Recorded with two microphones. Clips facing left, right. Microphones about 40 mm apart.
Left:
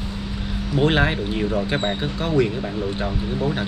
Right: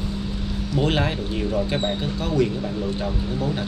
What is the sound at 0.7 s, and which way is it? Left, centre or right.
Speech, left.